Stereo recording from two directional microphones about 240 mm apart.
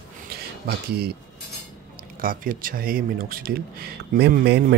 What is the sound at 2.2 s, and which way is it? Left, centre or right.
Speech, right.